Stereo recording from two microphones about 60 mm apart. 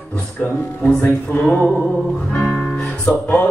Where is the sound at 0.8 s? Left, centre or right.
Left.